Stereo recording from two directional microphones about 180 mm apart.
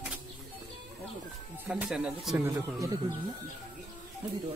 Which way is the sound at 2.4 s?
20° right (ahead or behind).